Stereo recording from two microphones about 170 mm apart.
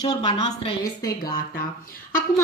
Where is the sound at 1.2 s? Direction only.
60° left (ahead or behind).